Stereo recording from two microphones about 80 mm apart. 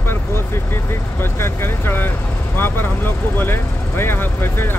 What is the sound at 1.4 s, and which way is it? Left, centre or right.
Speech, left.